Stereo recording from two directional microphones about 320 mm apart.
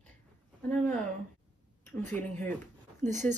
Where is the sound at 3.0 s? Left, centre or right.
Right.